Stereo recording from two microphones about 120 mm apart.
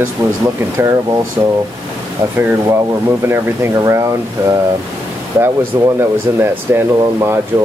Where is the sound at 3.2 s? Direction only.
20° right (ahead or behind).